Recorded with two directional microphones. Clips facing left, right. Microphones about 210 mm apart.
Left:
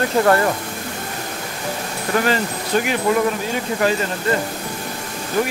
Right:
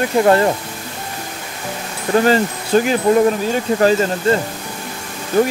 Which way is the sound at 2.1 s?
35° right (ahead or behind).